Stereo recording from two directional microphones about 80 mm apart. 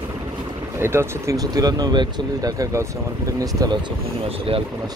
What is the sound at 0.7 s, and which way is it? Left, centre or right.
Speech, right.